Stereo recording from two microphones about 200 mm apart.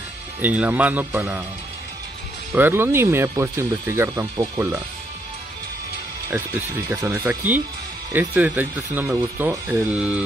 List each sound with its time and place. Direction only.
0.4 s speech: 10° right (ahead or behind)
2.5 s speech: 10° right (ahead or behind)
6.3 s speech: 10° right (ahead or behind)